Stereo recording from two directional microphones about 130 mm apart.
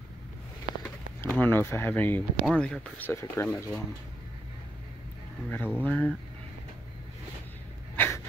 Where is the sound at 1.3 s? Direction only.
15° left (ahead or behind).